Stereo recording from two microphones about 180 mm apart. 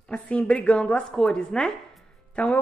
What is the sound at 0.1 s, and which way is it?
A woman's voice, 5° left (ahead or behind).